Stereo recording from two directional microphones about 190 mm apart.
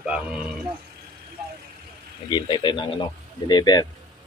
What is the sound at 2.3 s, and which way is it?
Speech, 25° left (ahead or behind).